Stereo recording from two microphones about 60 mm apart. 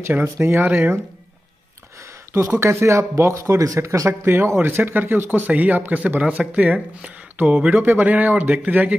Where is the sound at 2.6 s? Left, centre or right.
Right.